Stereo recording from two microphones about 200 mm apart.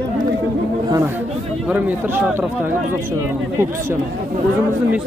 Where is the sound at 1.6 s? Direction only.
10° right (ahead or behind).